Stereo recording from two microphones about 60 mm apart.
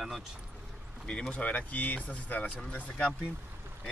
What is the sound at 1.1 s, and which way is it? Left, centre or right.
Speech, centre.